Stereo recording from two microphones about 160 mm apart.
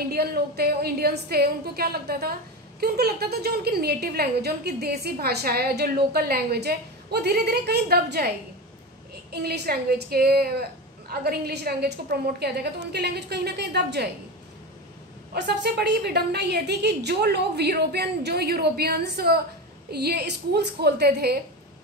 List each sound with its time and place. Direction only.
0.1 s a woman's voice: 75° right (ahead or behind)
9.3 s a woman's voice: 80° right
15.3 s a woman's voice: 90° right
19.9 s a woman's voice: 90° right